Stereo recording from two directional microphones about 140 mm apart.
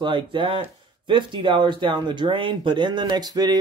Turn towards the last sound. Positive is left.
turn(degrees=-30)  # may be behind; listen again after turning